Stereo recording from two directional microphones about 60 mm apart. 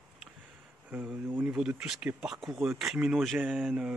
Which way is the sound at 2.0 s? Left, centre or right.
Right.